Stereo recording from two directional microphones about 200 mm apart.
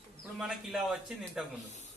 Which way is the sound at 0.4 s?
5° right (ahead or behind).